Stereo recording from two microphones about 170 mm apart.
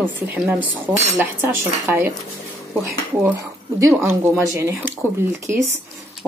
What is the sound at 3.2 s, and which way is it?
Speech, 15° right (ahead or behind).